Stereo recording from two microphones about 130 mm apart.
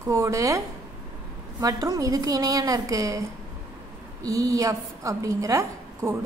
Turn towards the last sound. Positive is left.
turn(degrees=-25)  # may be behind; listen again after turning